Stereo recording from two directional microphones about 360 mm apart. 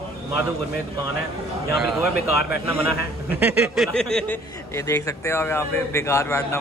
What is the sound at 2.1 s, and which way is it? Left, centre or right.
Speech, left.